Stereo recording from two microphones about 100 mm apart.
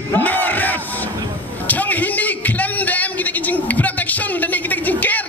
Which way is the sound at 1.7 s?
15° left (ahead or behind).